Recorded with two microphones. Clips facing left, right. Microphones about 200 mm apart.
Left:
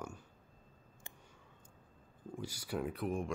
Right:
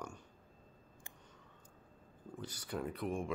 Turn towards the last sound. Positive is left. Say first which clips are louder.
# left 1 dB
turn(degrees=0)  # may be behind; listen again after turning